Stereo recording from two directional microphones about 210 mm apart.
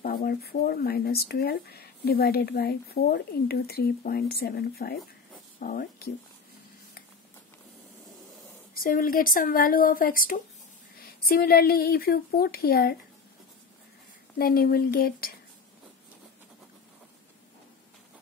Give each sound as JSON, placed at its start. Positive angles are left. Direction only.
{"t": 0.0, "sound": "speech", "side_deg": 45}
{"t": 8.8, "sound": "speech", "side_deg": 45}
{"t": 14.4, "sound": "speech", "side_deg": 45}